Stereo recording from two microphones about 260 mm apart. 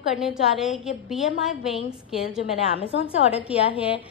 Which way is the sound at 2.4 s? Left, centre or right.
Left.